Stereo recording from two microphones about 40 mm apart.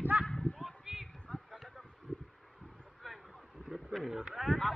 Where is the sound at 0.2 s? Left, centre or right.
Left.